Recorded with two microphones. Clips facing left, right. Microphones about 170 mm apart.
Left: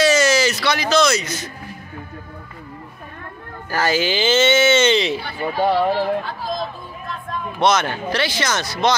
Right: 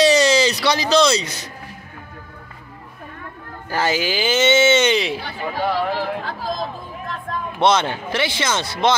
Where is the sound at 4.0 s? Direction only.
10° right (ahead or behind).